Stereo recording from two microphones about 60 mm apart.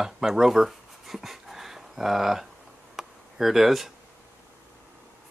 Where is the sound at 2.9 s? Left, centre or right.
Centre.